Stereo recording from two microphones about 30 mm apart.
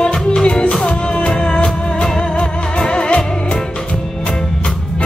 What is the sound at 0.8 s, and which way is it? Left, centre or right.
Music, left.